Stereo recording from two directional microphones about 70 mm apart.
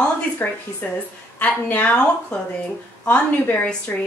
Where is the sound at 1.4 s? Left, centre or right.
Centre.